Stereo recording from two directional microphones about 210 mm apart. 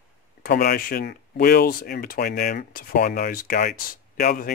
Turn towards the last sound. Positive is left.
turn(degrees=45)  # may be behind; listen again after turning